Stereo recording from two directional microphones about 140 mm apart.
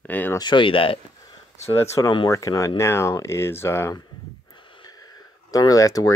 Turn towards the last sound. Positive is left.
turn(degrees=25)  # may be behind; listen again after turning